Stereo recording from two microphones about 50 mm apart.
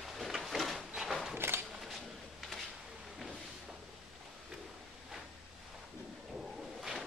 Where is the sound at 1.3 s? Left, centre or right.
Right.